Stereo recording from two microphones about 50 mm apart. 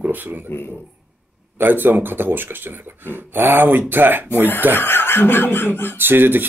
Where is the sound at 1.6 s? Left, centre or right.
Right.